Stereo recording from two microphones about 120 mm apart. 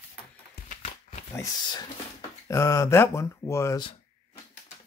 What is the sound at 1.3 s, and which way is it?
Speech, 30° left (ahead or behind).